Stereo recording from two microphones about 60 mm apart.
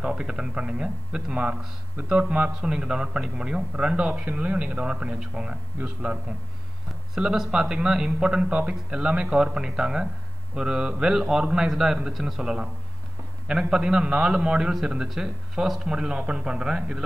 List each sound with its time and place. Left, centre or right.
0.0 s a man's voice: centre
7.2 s a man's voice: centre